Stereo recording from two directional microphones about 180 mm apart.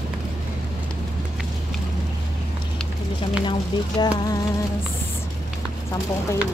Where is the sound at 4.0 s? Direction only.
20° left (ahead or behind).